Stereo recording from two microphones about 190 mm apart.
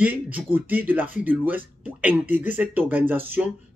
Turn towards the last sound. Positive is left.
turn(degrees=-10)  # may be behind; listen again after turning